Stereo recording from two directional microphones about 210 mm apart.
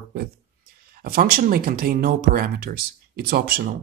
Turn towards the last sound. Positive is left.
turn(degrees=-45)  # may be behind; listen again after turning